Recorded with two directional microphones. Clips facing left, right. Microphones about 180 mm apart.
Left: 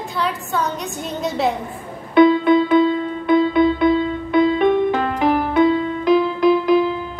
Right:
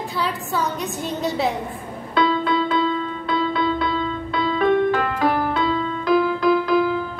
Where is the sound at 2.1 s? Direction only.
20° left (ahead or behind).